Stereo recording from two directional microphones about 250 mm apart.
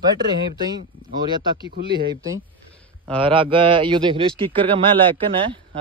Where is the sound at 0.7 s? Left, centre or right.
Centre.